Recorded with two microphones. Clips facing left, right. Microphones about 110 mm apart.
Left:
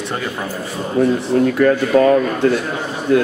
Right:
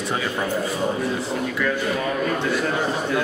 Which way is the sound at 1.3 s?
55° left (ahead or behind).